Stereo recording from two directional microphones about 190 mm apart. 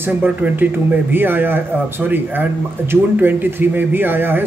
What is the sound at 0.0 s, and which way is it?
Speech, 10° right (ahead or behind).